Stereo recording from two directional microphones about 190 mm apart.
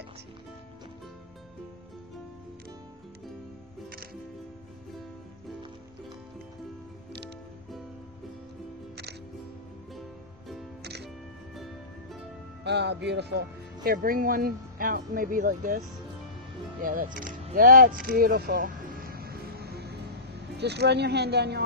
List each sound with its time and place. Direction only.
10.8 s music: 60° right (ahead or behind)
11.5 s music: centre (ahead or behind)
12.6 s speech: 65° right (ahead or behind)
13.8 s speech: 50° right (ahead or behind)
16.8 s speech: 45° right (ahead or behind)
18.6 s music: 45° right (ahead or behind)
20.5 s speech: 60° right (ahead or behind)